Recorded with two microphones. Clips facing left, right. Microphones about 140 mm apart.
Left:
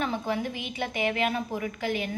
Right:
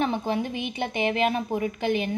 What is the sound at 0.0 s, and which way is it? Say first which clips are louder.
A woman's voice: right 3 dB; 25° right (ahead or behind).